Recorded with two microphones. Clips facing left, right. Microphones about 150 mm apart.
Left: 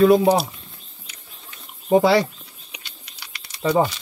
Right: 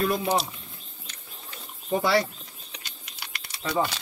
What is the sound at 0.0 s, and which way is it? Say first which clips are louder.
Speech: left 12 dB; 90° left.